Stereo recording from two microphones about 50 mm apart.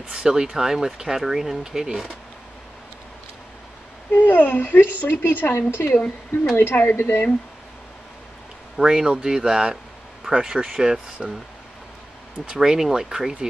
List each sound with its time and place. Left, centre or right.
0.1 s speech: centre
4.1 s speech: left
8.7 s speech: centre
12.5 s speech: centre